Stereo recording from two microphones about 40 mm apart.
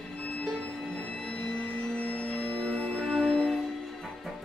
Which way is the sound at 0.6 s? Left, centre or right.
Left.